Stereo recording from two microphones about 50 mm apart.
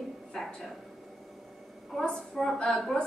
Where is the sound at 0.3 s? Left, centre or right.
Centre.